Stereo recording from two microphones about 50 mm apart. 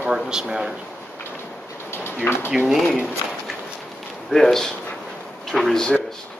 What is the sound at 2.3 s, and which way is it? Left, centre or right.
Speech, left.